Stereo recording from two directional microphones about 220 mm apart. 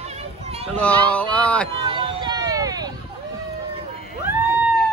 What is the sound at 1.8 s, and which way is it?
Vehicle, 20° right (ahead or behind).